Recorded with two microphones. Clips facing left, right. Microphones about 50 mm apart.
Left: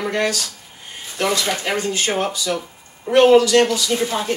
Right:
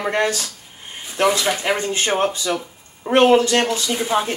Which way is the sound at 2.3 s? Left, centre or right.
Right.